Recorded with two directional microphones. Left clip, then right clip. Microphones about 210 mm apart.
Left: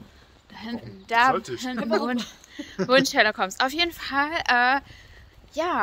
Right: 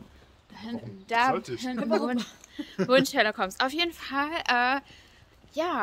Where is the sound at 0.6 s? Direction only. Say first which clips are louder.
Left 3 dB; 10° left (ahead or behind).